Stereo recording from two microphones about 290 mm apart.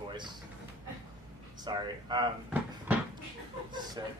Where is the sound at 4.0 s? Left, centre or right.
Centre.